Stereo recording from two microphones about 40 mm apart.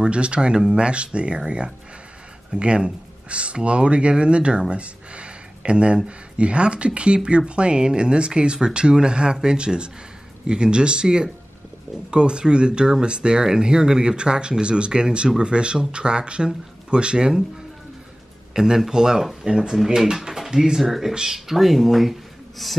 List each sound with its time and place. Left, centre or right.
0.0 s speech: right
18.5 s speech: centre
20.2 s speech: centre
20.8 s speech: centre